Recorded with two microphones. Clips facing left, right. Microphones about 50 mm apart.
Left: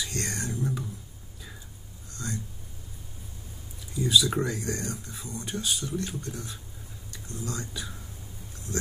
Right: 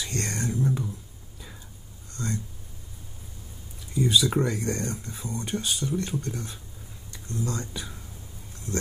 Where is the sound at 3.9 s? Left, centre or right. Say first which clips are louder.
Right 1 dB; right.